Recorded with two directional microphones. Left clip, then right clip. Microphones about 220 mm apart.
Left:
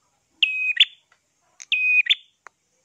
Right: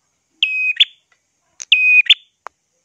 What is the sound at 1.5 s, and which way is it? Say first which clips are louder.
Smoke detector: right 8 dB; 25° right (ahead or behind).